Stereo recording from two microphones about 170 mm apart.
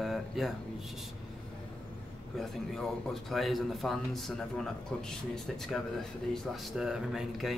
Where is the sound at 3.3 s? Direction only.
Centre (ahead or behind).